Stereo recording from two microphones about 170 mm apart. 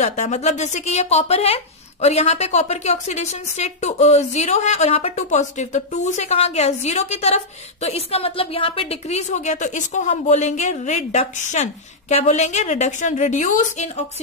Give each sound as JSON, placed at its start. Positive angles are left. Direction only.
{"t": 0.0, "sound": "a woman's voice", "side_deg": 40}